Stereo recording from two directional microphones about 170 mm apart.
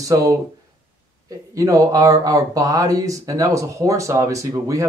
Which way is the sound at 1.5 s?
20° right (ahead or behind).